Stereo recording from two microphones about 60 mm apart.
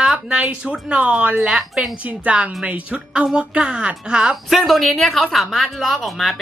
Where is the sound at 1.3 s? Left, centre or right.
Centre.